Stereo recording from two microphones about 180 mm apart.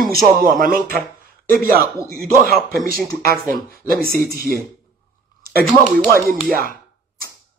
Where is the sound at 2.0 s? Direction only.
55° right (ahead or behind).